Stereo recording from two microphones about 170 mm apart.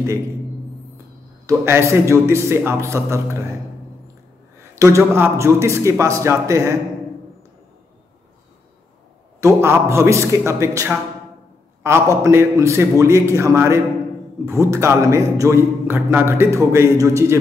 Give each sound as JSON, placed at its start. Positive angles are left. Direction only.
{"t": 1.4, "sound": "speech", "side_deg": -15}
{"t": 4.7, "sound": "speech", "side_deg": -20}
{"t": 9.4, "sound": "a man's voice", "side_deg": -15}